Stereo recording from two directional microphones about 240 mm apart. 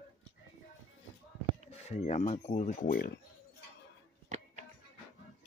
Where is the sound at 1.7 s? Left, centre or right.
Left.